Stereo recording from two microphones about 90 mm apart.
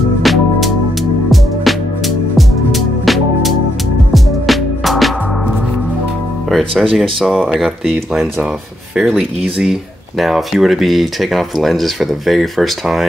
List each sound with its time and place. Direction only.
0.2 s music: centre (ahead or behind)
6.5 s speech: 5° left (ahead or behind)